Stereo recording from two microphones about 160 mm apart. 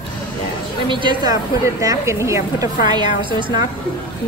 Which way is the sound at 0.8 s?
30° right (ahead or behind).